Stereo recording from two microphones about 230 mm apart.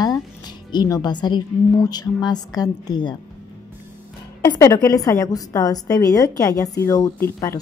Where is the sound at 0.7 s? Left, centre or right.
Centre.